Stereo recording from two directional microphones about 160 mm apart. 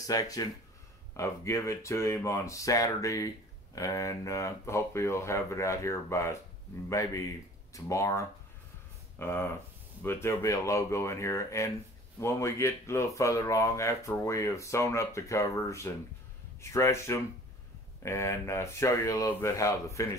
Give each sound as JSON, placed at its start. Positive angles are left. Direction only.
{"t": 0.0, "sound": "speech", "side_deg": 20}